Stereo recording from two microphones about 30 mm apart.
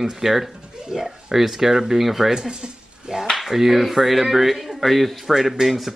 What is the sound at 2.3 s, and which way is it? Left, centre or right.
Dishes, right.